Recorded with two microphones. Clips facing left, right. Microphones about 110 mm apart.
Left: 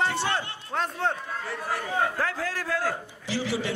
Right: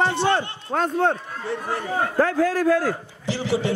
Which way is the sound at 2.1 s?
45° right (ahead or behind).